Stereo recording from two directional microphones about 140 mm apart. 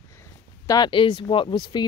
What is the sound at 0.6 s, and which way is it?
Speech, 30° left (ahead or behind).